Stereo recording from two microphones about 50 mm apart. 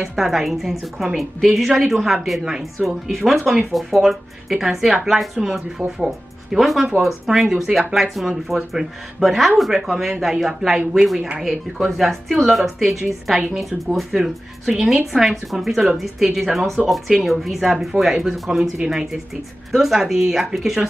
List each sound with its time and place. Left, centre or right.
0.0 s a woman's voice: centre
11.1 s speech: centre
11.4 s a woman's voice: centre
19.7 s a woman's voice: centre